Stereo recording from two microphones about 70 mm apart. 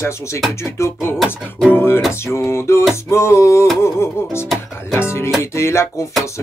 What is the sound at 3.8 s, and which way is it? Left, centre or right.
Music, left.